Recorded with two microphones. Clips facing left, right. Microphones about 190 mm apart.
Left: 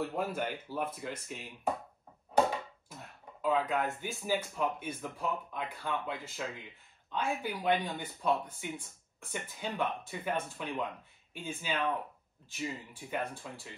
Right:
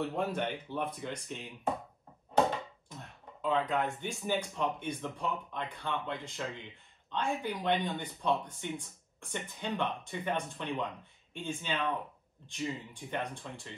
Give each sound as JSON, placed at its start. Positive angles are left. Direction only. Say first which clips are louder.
{"t": 0.0, "sound": "speech", "louder": "right 1 dB", "side_deg": 5}
{"t": 2.9, "sound": "speech", "louder": "right 1 dB", "side_deg": 0}